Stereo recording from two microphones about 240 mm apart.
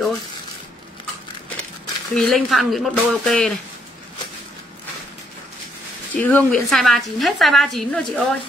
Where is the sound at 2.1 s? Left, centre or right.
Centre.